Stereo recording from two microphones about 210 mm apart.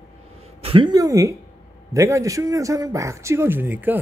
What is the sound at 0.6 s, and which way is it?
A man's voice, 25° right (ahead or behind).